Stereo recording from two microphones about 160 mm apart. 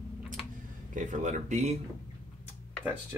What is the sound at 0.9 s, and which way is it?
Speech, 50° right (ahead or behind).